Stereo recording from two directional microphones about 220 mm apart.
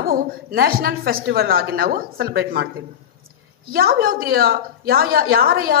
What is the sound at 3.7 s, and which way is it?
Speech, 40° right (ahead or behind).